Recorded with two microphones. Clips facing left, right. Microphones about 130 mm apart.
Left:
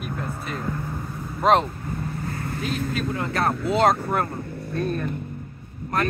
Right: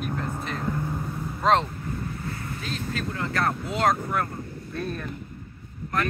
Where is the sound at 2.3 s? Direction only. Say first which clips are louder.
Left 5 dB; 55° left (ahead or behind).